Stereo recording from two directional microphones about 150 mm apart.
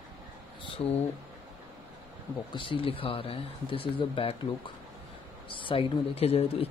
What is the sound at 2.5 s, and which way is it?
Speech, 35° left (ahead or behind).